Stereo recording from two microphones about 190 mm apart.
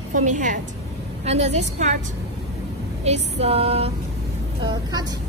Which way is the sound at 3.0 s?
35° right (ahead or behind).